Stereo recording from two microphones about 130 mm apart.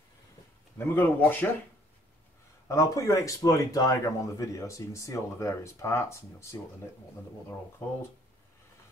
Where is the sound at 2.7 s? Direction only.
25° left (ahead or behind).